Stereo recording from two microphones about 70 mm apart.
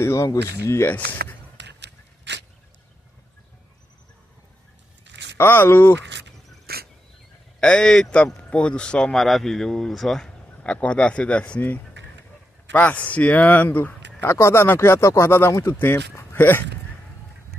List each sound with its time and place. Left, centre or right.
0.0 s speech: left
5.4 s speech: left
7.6 s a man's voice: centre
10.6 s a man's voice: centre
14.3 s speech: left